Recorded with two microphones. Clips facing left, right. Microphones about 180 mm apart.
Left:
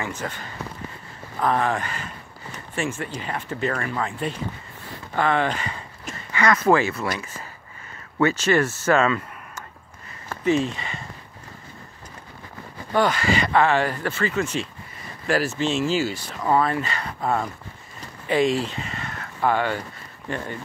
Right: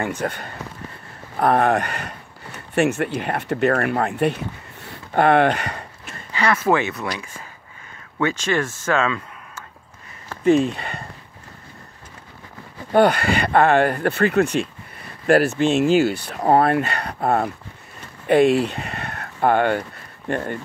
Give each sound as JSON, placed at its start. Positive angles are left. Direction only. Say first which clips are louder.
{"t": 0.0, "sound": "speech", "louder": "right 6 dB", "side_deg": -60}
{"t": 6.7, "sound": "speech", "louder": "left 1 dB", "side_deg": -5}
{"t": 8.2, "sound": "speech", "louder": "left 2 dB", "side_deg": 5}
{"t": 10.4, "sound": "speech", "louder": "right 5 dB", "side_deg": -50}
{"t": 12.9, "sound": "speech", "louder": "right 5 dB", "side_deg": -60}